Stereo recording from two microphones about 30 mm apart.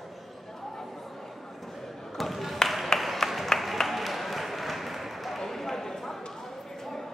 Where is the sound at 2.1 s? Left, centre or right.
Centre.